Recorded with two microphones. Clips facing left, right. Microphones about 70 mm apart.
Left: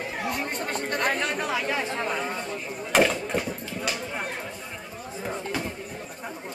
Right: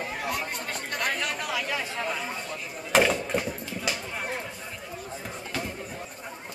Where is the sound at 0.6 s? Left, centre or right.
Left.